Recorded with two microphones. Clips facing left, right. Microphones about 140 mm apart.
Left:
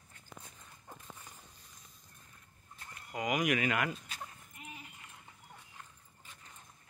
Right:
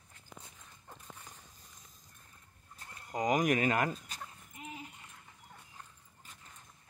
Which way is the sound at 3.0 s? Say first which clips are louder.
Right 3 dB; 35° right (ahead or behind).